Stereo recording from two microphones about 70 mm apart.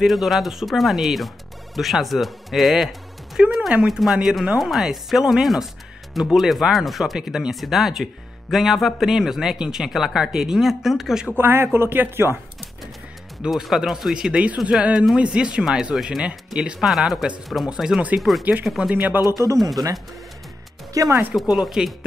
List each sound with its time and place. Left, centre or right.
0.0 s speech: centre
11.3 s speech: right
13.5 s speech: centre
18.4 s speech: right
18.7 s speech: centre
18.9 s speech: right
19.4 s speech: right
20.9 s speech: right
21.4 s speech: centre